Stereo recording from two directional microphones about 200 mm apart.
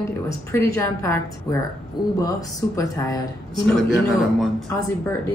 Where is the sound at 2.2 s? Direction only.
15° left (ahead or behind).